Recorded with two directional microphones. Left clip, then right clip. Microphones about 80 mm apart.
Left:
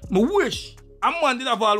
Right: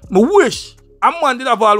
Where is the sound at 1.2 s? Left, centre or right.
Right.